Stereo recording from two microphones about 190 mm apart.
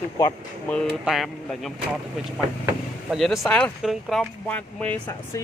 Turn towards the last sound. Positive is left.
turn(degrees=10)  # may be behind; listen again after turning